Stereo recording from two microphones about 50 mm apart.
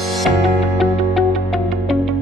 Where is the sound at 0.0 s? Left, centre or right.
Centre.